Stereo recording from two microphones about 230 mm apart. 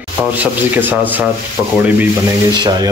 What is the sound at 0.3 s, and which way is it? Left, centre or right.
A man's voice, centre.